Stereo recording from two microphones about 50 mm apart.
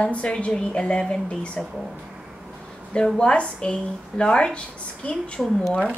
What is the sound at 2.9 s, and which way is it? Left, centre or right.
A woman's voice, centre.